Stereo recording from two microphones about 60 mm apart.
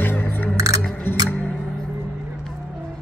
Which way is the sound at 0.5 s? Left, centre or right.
Right.